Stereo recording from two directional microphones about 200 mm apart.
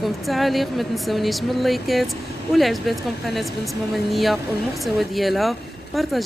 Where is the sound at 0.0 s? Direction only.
Centre (ahead or behind).